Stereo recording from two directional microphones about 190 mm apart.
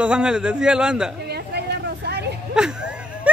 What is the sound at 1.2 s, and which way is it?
Vehicle, 60° right (ahead or behind).